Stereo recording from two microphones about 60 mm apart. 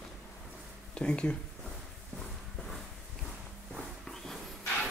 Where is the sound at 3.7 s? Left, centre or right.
Centre.